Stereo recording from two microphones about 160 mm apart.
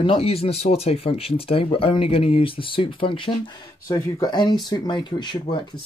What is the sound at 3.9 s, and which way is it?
Speech, 20° left (ahead or behind).